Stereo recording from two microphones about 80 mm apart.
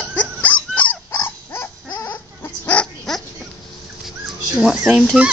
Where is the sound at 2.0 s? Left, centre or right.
Left.